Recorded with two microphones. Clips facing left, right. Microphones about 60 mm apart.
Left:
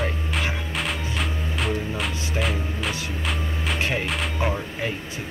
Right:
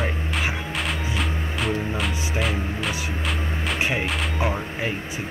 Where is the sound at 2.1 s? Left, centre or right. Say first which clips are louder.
Right 1 dB; centre.